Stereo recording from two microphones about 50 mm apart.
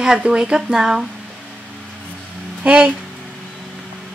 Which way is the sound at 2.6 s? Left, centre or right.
Right.